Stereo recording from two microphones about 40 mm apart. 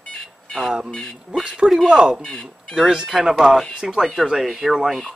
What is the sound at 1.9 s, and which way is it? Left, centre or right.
Speech, centre.